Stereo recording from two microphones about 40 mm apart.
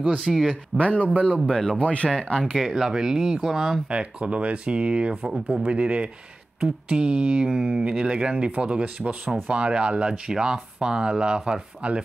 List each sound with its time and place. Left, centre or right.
0.2 s speech: centre
0.7 s speech: left
1.5 s speech: centre
1.8 s speech: left
2.5 s speech: centre
3.9 s speech: right